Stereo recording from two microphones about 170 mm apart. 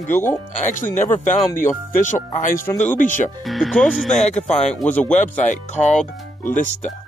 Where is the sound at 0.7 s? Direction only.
50° left (ahead or behind).